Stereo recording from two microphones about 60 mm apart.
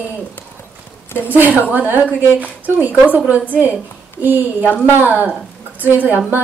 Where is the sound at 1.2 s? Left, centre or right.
Right.